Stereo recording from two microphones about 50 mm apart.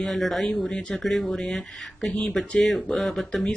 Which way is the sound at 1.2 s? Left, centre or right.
Centre.